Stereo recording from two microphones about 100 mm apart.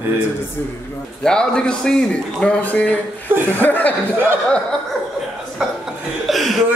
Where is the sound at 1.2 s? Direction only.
10° left (ahead or behind).